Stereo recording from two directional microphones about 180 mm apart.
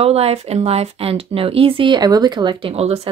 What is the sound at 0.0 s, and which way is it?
Speech, 35° right (ahead or behind).